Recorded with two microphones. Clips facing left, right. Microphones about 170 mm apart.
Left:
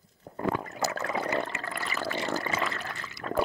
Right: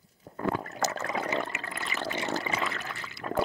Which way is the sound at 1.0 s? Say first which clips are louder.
Left 1 dB; 15° right (ahead or behind).